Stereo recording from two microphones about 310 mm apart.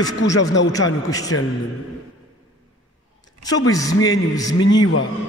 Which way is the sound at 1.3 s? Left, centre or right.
Left.